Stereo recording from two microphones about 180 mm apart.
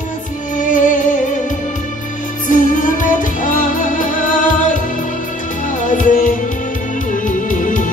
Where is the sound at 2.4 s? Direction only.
45° left (ahead or behind).